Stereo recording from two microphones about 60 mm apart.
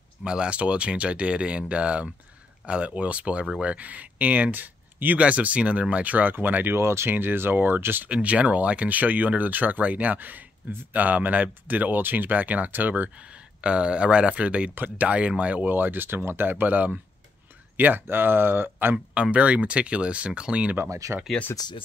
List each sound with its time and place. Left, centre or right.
0.2 s speech: centre; by 8.1 s right
8.1 s speech: right
13.6 s speech: centre; by 18.9 s right
19.3 s speech: right
21.0 s speech: right